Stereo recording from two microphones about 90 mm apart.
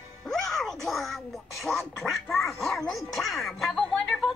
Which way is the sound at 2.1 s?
Centre (ahead or behind).